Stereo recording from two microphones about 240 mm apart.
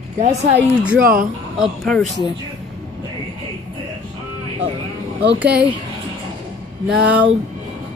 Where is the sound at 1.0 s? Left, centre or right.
Right.